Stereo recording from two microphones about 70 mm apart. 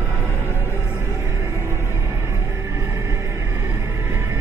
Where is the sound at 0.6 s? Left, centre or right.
Right.